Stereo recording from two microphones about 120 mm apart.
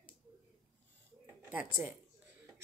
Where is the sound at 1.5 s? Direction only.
15° right (ahead or behind).